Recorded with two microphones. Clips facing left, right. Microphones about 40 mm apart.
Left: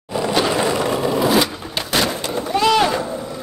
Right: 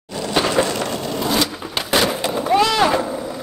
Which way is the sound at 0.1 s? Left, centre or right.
Centre.